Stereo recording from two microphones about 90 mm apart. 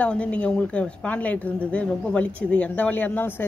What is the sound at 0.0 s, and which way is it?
Speech, 15° left (ahead or behind).